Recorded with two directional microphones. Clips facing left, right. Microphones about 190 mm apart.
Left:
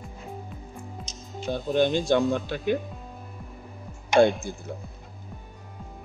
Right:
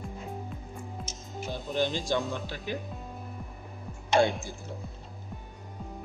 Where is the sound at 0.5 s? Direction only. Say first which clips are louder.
Even; centre (ahead or behind).